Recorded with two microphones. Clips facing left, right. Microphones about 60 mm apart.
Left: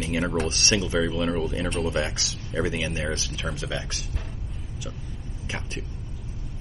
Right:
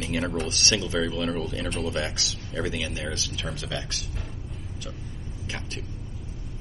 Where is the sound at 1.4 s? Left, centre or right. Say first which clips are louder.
Left 3 dB; left.